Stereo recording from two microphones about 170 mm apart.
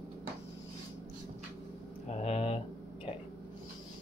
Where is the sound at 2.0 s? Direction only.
40° left (ahead or behind).